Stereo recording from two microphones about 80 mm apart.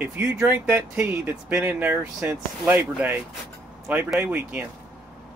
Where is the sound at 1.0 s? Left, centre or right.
Right.